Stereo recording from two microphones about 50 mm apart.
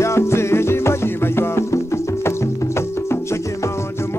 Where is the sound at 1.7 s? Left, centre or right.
Left.